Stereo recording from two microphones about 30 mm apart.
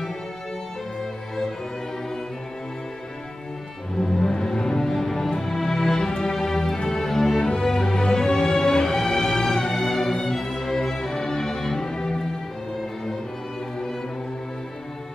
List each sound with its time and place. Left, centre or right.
4.0 s music: left
7.3 s music: left
7.6 s music: centre
8.3 s music: left
8.6 s music: centre